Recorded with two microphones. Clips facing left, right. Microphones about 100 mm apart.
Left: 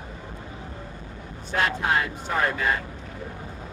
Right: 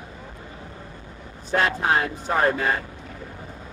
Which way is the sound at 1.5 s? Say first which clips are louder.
Right 3 dB; 35° right (ahead or behind).